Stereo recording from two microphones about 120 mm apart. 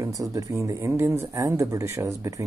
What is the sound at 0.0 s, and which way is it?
Speech, 25° right (ahead or behind).